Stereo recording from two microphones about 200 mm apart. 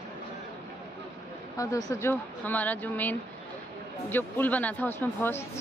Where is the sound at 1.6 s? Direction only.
15° left (ahead or behind).